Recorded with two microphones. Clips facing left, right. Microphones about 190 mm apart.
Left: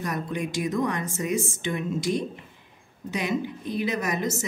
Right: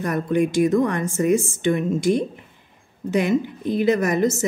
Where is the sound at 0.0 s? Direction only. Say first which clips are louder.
Right 9 dB; 55° right (ahead or behind).